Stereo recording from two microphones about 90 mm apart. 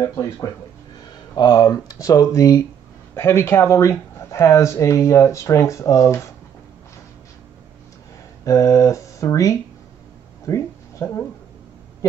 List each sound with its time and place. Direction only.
0.0 s speech: 35° left (ahead or behind)
1.3 s speech: 50° left (ahead or behind)
3.2 s speech: 25° left (ahead or behind)
8.5 s speech: 35° left (ahead or behind)
12.0 s owl: 40° left (ahead or behind)